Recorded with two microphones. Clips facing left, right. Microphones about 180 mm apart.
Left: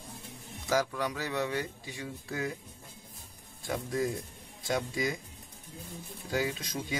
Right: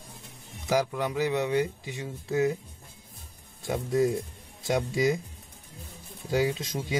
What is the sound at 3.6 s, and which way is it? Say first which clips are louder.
Speech: right 6 dB; 25° right (ahead or behind).